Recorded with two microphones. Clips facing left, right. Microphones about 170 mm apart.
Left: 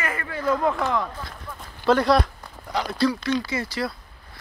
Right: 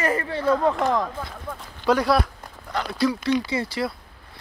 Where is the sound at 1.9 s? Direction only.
10° right (ahead or behind).